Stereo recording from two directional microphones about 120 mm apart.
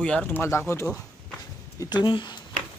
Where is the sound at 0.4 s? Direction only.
20° left (ahead or behind).